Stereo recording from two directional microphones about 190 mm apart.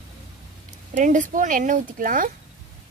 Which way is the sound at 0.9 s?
40° right (ahead or behind).